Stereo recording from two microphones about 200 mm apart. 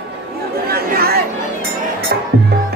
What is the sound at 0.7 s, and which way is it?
Chatter, 50° right (ahead or behind).